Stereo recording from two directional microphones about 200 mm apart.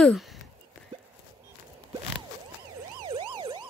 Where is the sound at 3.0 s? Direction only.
25° right (ahead or behind).